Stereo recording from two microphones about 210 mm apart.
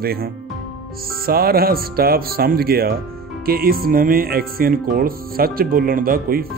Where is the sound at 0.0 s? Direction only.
45° right (ahead or behind).